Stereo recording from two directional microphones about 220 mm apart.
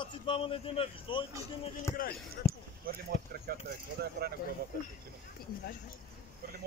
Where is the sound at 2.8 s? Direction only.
45° right (ahead or behind).